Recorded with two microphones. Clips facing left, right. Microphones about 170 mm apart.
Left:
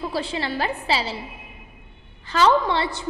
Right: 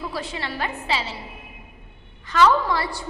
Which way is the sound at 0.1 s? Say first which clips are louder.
Left 4 dB; 30° left (ahead or behind).